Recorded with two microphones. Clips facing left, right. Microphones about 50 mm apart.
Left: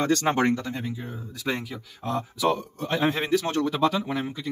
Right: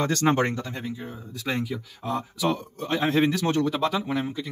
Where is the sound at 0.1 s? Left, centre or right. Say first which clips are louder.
Right 1 dB; right.